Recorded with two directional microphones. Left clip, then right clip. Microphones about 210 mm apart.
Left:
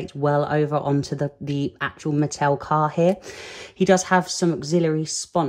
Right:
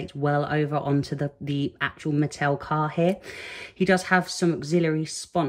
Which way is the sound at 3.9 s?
10° left (ahead or behind).